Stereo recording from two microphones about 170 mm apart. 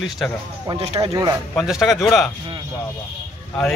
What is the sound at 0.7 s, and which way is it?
Speech, 35° right (ahead or behind).